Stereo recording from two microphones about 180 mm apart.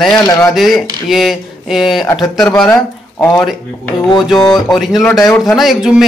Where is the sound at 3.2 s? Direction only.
15° left (ahead or behind).